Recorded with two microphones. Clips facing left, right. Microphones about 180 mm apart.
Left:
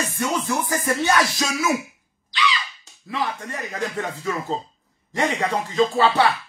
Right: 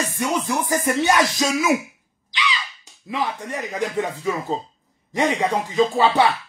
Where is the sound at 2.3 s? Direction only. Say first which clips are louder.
Left 2 dB; 15° right (ahead or behind).